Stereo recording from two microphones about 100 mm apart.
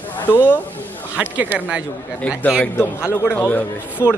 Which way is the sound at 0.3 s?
20° left (ahead or behind).